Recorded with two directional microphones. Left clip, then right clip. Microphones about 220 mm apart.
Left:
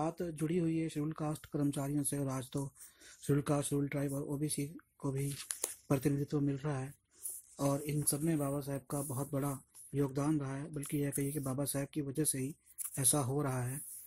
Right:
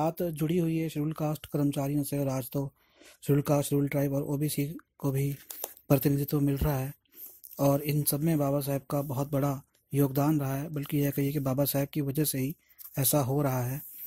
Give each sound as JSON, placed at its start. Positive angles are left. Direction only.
{"t": 0.0, "sound": "speech", "side_deg": -35}